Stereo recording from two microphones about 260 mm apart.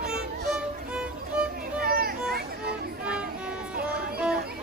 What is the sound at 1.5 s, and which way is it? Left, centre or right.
Music, right.